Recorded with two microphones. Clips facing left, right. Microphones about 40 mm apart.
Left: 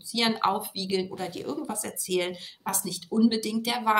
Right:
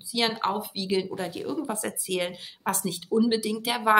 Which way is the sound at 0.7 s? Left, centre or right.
Centre.